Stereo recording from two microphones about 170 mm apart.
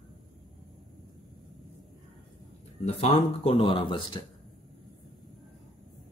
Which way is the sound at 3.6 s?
30° left (ahead or behind).